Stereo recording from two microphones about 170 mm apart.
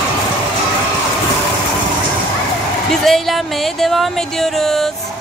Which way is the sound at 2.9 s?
Centre (ahead or behind).